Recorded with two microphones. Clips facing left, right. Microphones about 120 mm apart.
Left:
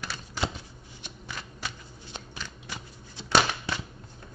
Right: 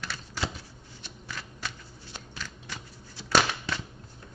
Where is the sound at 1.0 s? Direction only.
15° left (ahead or behind).